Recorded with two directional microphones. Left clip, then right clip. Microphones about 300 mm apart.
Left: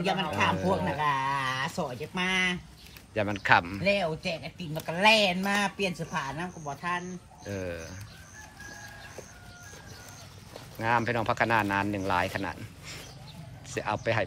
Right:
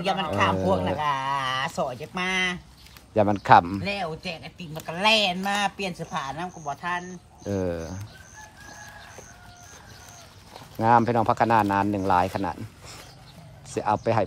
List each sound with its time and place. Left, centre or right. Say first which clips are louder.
0.0 s speech: right 3 dB; centre
3.8 s speech: left 3 dB; centre
10.8 s speech: right 7 dB; centre